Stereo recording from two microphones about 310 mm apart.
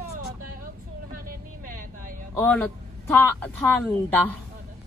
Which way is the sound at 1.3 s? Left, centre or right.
Right.